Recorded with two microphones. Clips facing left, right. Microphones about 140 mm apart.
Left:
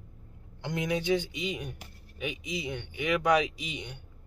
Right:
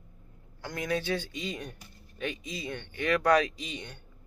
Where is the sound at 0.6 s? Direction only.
20° left (ahead or behind).